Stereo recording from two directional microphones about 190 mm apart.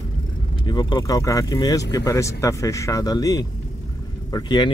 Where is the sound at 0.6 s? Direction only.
20° left (ahead or behind).